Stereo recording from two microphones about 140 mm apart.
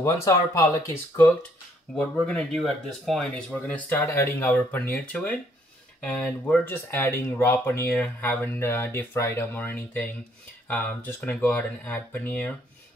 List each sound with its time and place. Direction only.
0.0 s speech: 25° left (ahead or behind)
2.0 s speech: 5° left (ahead or behind)